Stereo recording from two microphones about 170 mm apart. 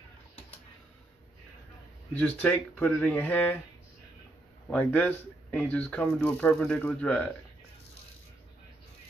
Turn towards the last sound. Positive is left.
turn(degrees=5)  # may be behind; listen again after turning